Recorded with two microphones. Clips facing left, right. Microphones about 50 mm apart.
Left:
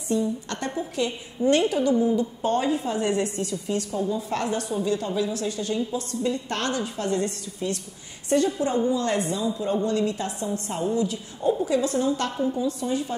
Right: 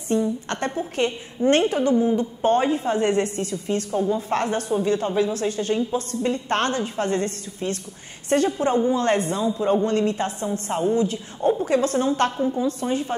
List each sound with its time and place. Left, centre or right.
0.1 s a woman's voice: right